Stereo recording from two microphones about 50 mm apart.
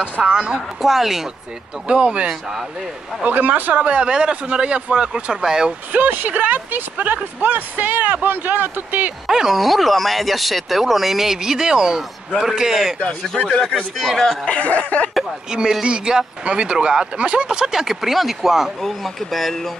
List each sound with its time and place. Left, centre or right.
0.3 s a man's voice: centre
0.8 s speech: centre
1.9 s a man's voice: right
3.3 s a man's voice: right; by 5.8 s centre
5.9 s speech: right
9.3 s a man's voice: centre
13.9 s speech: centre
14.5 s a sound: left
15.5 s a man's voice: centre
17.5 s speech: centre